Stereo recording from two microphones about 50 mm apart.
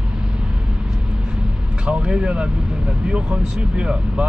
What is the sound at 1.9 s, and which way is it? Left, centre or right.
Speech, centre.